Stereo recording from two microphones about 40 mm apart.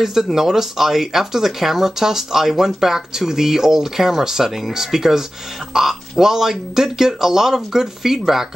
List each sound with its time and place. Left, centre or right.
0.0 s speech: centre